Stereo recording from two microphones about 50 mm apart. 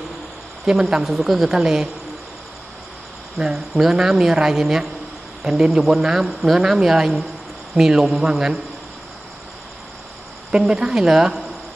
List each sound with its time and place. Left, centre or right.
0.7 s a woman's voice: centre
3.3 s a woman's voice: centre
8.1 s a man's voice: right
10.8 s speech: centre